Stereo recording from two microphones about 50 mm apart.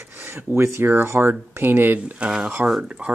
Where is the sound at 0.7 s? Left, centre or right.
Right.